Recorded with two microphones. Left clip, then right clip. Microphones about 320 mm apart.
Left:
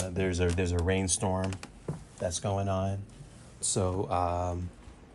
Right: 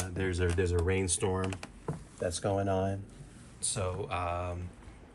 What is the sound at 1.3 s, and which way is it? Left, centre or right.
Speech, centre.